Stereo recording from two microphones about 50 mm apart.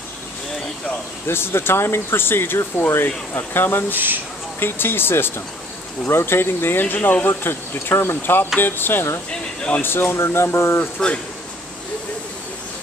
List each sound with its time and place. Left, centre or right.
1.2 s speech: left
3.9 s speech: right
4.6 s speech: left
9.3 s speech: left
9.8 s speech: left
10.1 s speech: left
10.8 s speech: left